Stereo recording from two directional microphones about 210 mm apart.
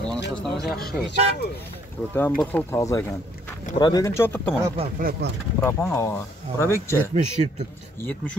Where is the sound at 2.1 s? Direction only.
10° left (ahead or behind).